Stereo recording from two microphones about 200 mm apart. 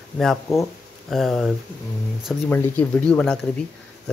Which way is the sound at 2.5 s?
5° left (ahead or behind).